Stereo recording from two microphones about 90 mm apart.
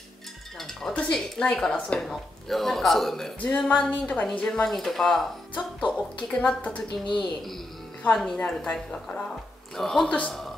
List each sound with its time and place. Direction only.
0.6 s speech: 5° left (ahead or behind)
3.4 s a woman's voice: 15° left (ahead or behind)
6.2 s a woman's voice: 15° left (ahead or behind)
6.9 s speech: 60° left (ahead or behind)
8.1 s a woman's voice: 5° left (ahead or behind)